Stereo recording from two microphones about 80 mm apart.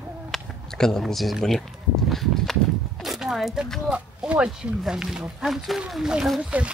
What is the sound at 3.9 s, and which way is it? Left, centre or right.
Speech, centre.